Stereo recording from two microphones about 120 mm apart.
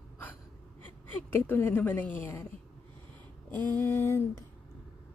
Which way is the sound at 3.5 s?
20° left (ahead or behind).